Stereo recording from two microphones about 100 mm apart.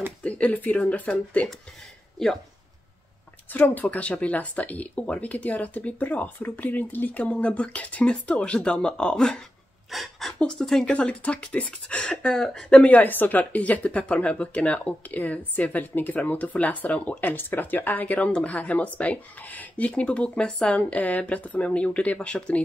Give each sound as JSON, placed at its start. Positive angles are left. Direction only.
{"t": 0.2, "sound": "speech", "side_deg": 15}
{"t": 3.5, "sound": "speech", "side_deg": 20}